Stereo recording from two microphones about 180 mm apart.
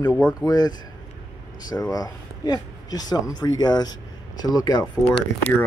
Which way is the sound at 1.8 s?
20° left (ahead or behind).